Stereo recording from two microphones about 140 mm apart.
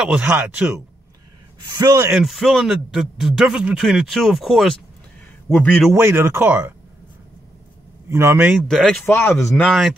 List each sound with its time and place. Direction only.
0.1 s speech: 10° right (ahead or behind)
1.8 s speech: 25° right (ahead or behind)
2.1 s speech: centre (ahead or behind)
5.5 s a man's voice: 10° left (ahead or behind)
5.9 s speech: 15° right (ahead or behind)
8.1 s speech: 20° right (ahead or behind)
8.5 s speech: centre (ahead or behind)
9.0 s a man's voice: 15° left (ahead or behind)
9.7 s speech: centre (ahead or behind)